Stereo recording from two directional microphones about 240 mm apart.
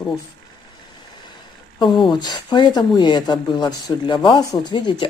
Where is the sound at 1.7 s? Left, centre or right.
Centre.